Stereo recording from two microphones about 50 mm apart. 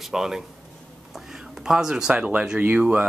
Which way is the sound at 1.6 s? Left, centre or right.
Centre.